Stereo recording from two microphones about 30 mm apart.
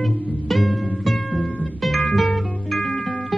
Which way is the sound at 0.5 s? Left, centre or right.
Centre.